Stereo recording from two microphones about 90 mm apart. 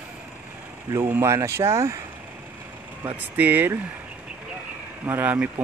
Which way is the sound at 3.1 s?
15° right (ahead or behind).